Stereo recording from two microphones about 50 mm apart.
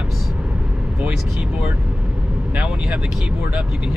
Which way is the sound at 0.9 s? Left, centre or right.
Right.